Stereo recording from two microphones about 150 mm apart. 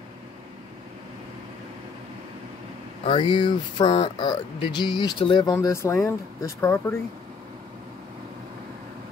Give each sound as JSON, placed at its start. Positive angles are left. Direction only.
{"t": 3.1, "sound": "speech", "side_deg": 35}
{"t": 5.5, "sound": "speech", "side_deg": 20}